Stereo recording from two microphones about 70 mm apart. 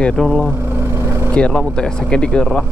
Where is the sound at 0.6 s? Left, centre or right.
Right.